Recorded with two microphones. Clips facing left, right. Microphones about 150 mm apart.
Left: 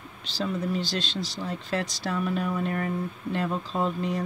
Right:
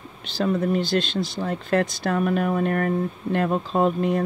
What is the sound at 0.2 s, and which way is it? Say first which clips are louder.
Speech: right 7 dB; 55° right (ahead or behind).